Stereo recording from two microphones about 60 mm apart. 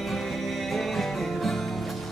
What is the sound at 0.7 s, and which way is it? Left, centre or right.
Music, centre.